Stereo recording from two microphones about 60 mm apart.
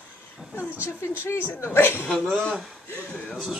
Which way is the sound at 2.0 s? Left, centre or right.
Centre.